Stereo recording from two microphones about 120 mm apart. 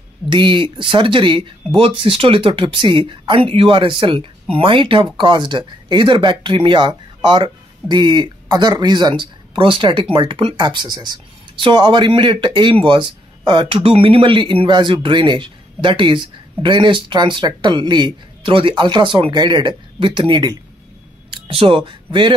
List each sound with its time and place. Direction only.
0.3 s speech: 45° right (ahead or behind)